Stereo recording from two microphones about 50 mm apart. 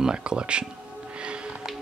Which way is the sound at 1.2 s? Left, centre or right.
Centre.